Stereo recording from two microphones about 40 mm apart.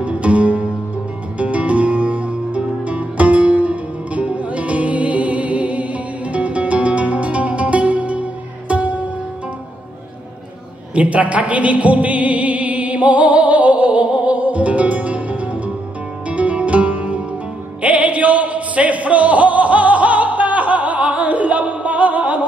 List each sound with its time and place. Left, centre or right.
0.0 s music: right
11.0 s music: right